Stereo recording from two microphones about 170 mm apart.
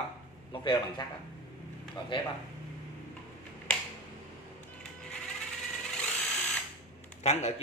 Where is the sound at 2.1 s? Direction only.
30° left (ahead or behind).